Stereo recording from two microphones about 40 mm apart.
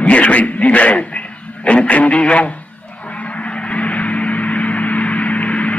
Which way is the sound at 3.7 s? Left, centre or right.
Left.